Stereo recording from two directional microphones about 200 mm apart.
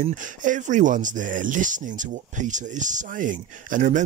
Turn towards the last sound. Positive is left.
turn(degrees=-40)  # may be behind; listen again after turning